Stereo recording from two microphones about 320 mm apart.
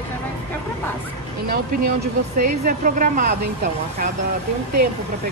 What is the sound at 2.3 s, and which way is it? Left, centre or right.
Speech, right.